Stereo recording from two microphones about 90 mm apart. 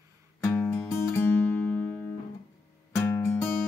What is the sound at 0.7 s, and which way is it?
Music, 30° left (ahead or behind).